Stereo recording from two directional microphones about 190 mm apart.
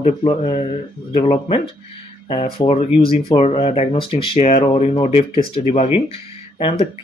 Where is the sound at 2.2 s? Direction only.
30° left (ahead or behind).